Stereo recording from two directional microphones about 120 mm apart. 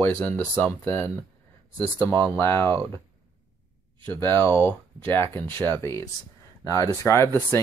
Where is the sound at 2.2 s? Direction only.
15° left (ahead or behind).